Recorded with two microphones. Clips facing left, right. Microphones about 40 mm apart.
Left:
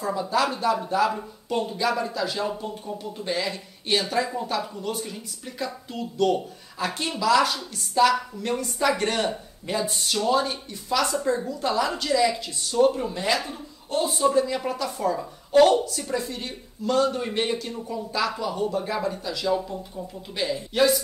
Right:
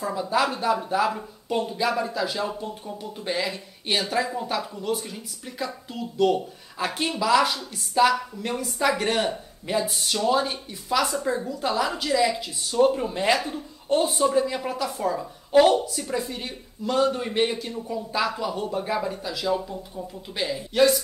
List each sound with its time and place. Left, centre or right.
0.0 s speech: centre
13.1 s speech: right
14.1 s speech: centre